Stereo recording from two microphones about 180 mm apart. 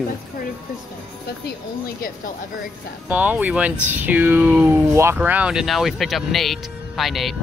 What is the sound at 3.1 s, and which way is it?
Speech, 10° right (ahead or behind).